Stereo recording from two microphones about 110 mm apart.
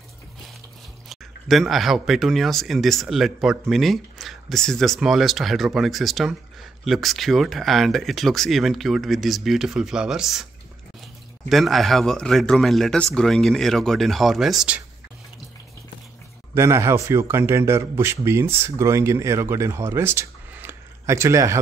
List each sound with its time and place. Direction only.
1.0 s speech: centre (ahead or behind)
16.5 s speech: 25° right (ahead or behind)